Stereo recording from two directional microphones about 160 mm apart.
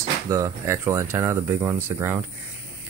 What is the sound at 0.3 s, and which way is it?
Speech, 20° right (ahead or behind).